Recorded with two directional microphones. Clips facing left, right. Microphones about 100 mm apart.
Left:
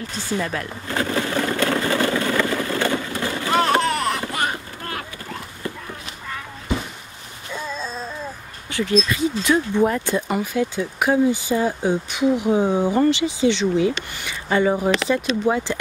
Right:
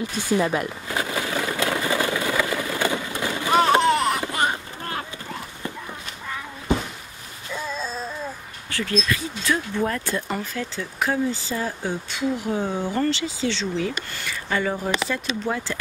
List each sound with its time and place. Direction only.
0.0 s pigeon: 15° right (ahead or behind)
7.5 s a sound: centre (ahead or behind)
8.6 s speech: 20° left (ahead or behind)